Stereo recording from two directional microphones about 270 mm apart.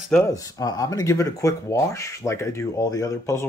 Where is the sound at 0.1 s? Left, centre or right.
Centre.